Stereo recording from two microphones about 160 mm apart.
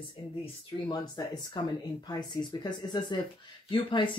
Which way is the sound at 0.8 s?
25° left (ahead or behind).